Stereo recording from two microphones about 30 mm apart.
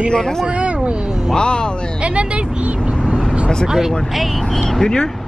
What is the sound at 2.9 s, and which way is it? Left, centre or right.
Vehicle, left.